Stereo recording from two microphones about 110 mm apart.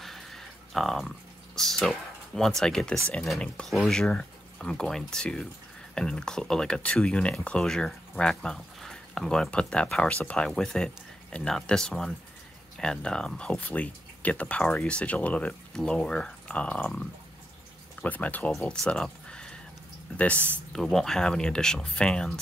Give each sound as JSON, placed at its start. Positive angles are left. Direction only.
{"t": 0.0, "sound": "a sound", "side_deg": 0}
{"t": 3.3, "sound": "speech", "side_deg": 5}
{"t": 18.5, "sound": "speech", "side_deg": 5}
{"t": 20.3, "sound": "speech", "side_deg": -20}
{"t": 20.7, "sound": "speech", "side_deg": 5}